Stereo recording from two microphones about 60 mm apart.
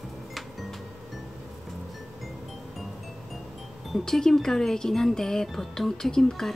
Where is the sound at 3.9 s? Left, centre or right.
Centre.